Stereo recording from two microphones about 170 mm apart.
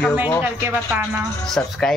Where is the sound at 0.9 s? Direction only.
10° right (ahead or behind).